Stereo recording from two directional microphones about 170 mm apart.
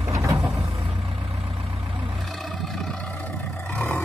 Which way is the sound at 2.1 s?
Centre (ahead or behind).